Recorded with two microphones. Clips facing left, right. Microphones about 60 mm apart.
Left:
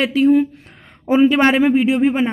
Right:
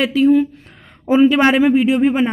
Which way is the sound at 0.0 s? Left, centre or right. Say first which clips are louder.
Right 1 dB; left.